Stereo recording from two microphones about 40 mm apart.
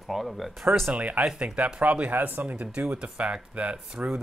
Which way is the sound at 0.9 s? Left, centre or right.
Right.